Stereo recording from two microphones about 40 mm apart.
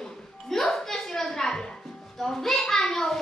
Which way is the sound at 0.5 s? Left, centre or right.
Centre.